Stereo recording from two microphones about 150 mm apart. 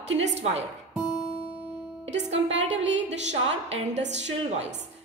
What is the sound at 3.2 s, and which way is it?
Speech, 50° right (ahead or behind).